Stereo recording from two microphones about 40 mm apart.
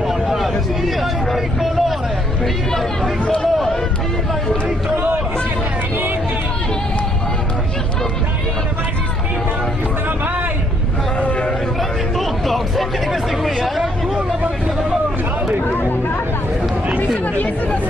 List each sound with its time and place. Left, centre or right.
0.4 s hubbub: centre
4.9 s chatter: right
12.4 s a sound: centre